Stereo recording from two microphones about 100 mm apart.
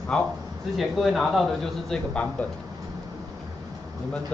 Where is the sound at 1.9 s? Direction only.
10° left (ahead or behind).